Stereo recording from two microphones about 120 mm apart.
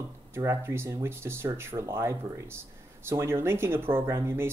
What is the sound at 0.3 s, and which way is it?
Speech, 20° right (ahead or behind).